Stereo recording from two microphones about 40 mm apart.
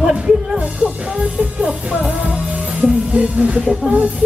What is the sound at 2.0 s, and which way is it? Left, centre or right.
Music, right.